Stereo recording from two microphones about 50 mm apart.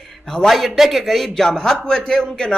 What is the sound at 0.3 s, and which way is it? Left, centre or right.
Speech, centre.